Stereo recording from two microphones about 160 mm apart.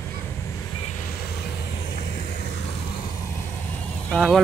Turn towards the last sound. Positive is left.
turn(degrees=0)  # may be behind; listen again after turning